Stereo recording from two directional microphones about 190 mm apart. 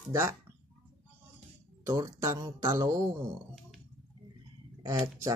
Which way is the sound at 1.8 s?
20° right (ahead or behind).